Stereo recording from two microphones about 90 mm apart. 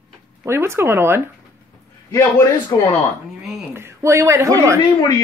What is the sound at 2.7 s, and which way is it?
Speech, 45° left (ahead or behind).